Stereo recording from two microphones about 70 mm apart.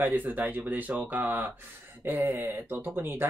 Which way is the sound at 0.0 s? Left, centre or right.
Right.